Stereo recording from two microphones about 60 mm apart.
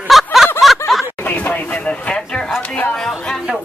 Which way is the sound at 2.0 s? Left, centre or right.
Centre.